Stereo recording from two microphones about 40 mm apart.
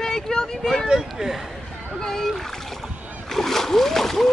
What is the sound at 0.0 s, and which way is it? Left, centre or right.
Speech, centre.